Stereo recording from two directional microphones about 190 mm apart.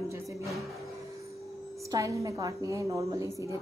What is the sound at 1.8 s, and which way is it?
A woman's voice, 15° right (ahead or behind).